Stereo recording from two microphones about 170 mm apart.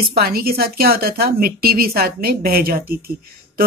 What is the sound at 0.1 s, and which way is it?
A woman's voice, 65° right (ahead or behind).